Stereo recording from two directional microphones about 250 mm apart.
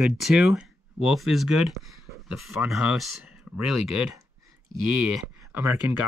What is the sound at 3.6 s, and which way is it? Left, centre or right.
Speech, left.